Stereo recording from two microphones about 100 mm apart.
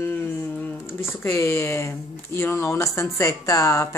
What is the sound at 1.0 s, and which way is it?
Speech, 25° left (ahead or behind).